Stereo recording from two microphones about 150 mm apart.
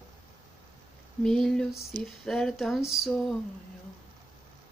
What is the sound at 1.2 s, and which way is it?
Music, 5° left (ahead or behind).